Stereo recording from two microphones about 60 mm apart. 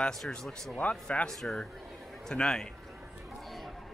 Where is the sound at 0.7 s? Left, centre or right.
Left.